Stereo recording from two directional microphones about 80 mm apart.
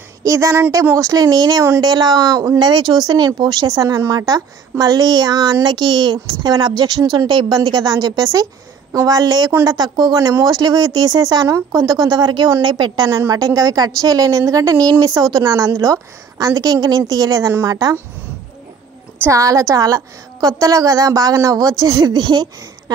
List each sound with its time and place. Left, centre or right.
0.2 s speech: right
1.2 s speech: right
2.6 s speech: right
3.5 s a woman's voice: right
10.1 s speech: right
11.4 s a woman's voice: right
13.3 s a woman's voice: right
19.3 s a woman's voice: right
22.1 s speech: right